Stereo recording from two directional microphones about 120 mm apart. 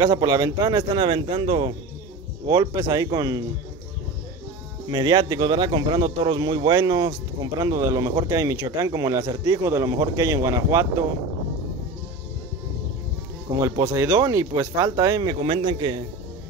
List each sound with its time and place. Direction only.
0.0 s speech: 30° right (ahead or behind)
1.0 s speech: 45° right (ahead or behind)
2.4 s speech: 30° right (ahead or behind)
4.9 s speech: 35° right (ahead or behind)
13.6 s speech: 25° right (ahead or behind); by 16.0 s 40° right (ahead or behind)